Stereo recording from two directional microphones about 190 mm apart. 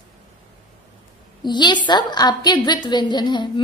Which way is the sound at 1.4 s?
25° left (ahead or behind).